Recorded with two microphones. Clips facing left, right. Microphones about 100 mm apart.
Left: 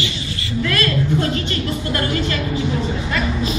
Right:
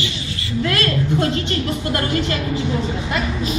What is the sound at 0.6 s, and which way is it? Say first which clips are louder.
Speech: left 1 dB; 30° right (ahead or behind).